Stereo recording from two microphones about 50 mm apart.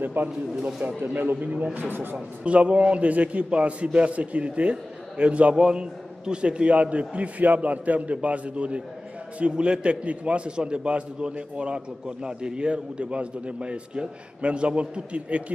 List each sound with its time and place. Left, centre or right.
0.0 s a man's voice: right
0.6 s a man's voice: centre
1.0 s speech: right
1.3 s a man's voice: right
1.8 s speech: right
2.4 s a man's voice: right